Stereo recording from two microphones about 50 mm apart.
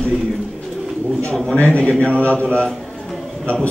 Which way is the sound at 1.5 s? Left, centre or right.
Left.